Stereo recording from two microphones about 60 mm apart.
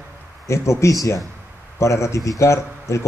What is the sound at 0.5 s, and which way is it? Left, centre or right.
Speech, left.